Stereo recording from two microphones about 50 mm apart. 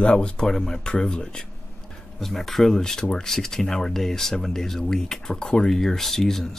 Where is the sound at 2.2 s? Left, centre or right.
Centre.